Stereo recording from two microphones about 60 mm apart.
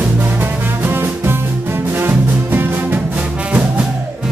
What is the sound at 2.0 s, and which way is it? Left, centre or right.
Music, right.